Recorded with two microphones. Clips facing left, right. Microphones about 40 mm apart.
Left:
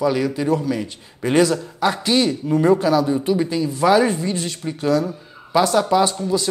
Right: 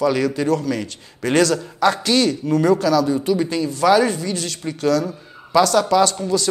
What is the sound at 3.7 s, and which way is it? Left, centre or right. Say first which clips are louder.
A man's voice: even; left.